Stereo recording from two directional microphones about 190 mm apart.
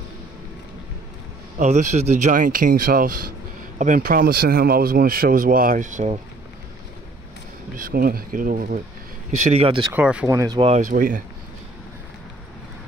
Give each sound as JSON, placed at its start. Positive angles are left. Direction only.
{"t": 1.6, "sound": "speech", "side_deg": -40}
{"t": 7.7, "sound": "speech", "side_deg": -50}
{"t": 9.5, "sound": "speech", "side_deg": -30}
{"t": 9.9, "sound": "speech", "side_deg": -5}
{"t": 10.8, "sound": "speech", "side_deg": -45}